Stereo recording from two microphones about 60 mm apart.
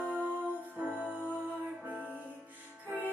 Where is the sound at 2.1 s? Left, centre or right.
Left.